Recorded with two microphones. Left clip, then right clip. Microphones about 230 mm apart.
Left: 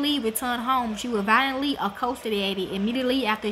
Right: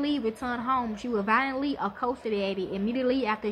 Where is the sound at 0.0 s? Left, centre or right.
Left.